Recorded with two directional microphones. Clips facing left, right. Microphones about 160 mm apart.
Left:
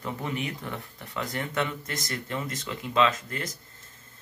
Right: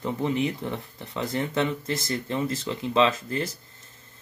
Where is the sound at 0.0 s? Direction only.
25° right (ahead or behind).